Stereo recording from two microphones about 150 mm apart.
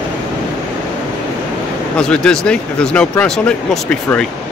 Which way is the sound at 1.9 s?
5° left (ahead or behind).